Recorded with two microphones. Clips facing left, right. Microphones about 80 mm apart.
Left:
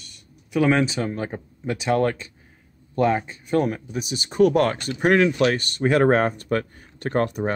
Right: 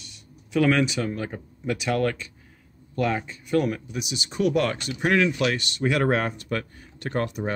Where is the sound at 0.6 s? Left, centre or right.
Left.